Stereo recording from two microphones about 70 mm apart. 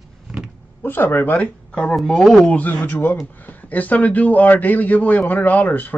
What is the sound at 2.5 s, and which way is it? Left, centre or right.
A man's voice, left.